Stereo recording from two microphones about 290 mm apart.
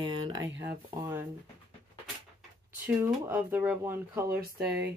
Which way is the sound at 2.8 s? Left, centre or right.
Centre.